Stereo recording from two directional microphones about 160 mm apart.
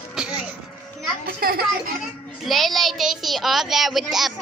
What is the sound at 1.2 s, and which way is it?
Speech, 70° right (ahead or behind).